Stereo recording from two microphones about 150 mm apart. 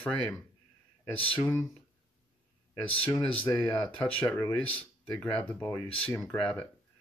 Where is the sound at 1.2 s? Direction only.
35° left (ahead or behind).